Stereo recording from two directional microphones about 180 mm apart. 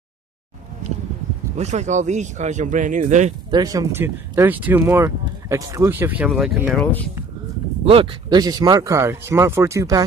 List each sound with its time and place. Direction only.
1.6 s speech: 40° right (ahead or behind)
3.4 s speech: 20° right (ahead or behind); by 6.9 s centre (ahead or behind)
7.8 s speech: 30° right (ahead or behind)